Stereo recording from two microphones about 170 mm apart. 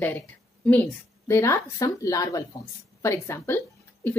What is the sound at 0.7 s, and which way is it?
A woman's voice, 10° left (ahead or behind).